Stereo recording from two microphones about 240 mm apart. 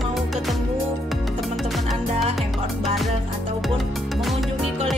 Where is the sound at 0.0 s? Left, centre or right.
Centre.